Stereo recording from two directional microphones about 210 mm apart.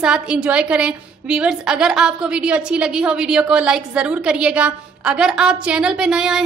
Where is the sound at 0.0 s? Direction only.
5° right (ahead or behind).